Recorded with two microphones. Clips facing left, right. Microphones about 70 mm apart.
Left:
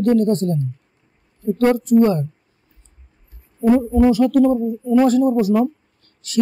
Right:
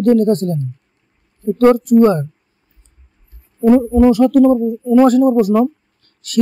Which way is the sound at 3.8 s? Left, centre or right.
Right.